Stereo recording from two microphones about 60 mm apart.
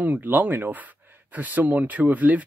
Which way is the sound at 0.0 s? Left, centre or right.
Right.